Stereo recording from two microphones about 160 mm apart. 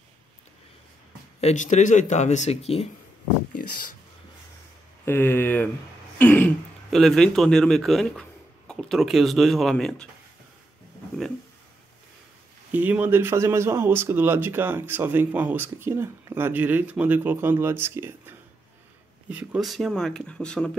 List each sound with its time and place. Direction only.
1.4 s speech: 50° left (ahead or behind)
5.0 s speech: 15° left (ahead or behind)
6.1 s throat clearing: 10° left (ahead or behind)
6.9 s speech: centre (ahead or behind)
12.7 s speech: 10° right (ahead or behind)